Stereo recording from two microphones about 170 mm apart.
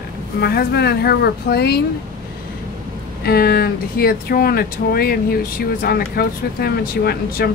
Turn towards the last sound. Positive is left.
turn(degrees=65)  # may be behind; listen again after turning